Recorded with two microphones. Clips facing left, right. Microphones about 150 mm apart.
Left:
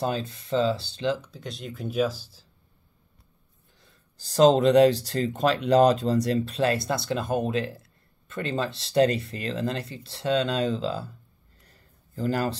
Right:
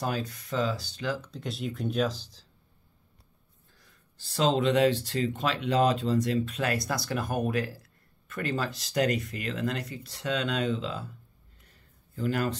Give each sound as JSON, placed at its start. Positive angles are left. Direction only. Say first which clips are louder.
{"t": 0.0, "sound": "speech", "louder": "left 3 dB", "side_deg": 25}
{"t": 1.2, "sound": "speech", "louder": "right 3 dB", "side_deg": 0}
{"t": 4.2, "sound": "speech", "louder": "left 7 dB", "side_deg": 40}
{"t": 12.2, "sound": "speech", "louder": "left 2 dB", "side_deg": 35}